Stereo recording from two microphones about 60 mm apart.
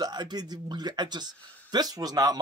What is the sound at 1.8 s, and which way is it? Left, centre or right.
Speech, right.